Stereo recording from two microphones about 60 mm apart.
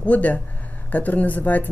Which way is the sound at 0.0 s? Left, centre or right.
Left.